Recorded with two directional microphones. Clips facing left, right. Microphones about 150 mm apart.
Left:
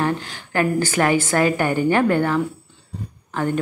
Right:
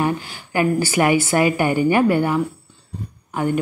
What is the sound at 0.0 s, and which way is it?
Speech, 10° right (ahead or behind).